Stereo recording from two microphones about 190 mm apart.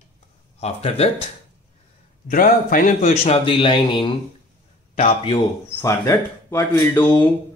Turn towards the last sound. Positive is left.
turn(degrees=10)  # may be behind; listen again after turning